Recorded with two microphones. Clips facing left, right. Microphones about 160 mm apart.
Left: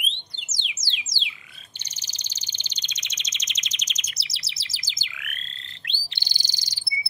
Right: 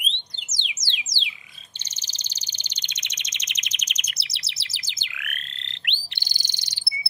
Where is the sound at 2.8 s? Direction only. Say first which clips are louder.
Even; 55° right (ahead or behind).